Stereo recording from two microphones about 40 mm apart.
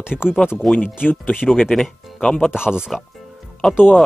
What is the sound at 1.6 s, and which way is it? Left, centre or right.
Speech, centre.